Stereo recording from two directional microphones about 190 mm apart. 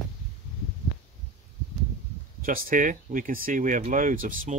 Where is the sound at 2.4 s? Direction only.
45° right (ahead or behind).